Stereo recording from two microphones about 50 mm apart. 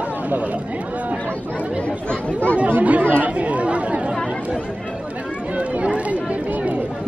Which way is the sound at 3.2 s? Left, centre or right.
Right.